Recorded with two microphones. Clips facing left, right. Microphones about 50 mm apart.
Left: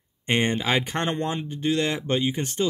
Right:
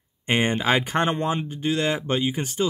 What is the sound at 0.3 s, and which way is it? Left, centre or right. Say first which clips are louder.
Speech: right 2 dB; centre.